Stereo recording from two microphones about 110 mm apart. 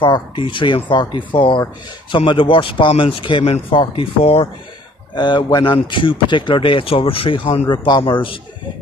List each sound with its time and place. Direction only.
0.0 s speech: 50° left (ahead or behind)
5.1 s speech: 45° left (ahead or behind)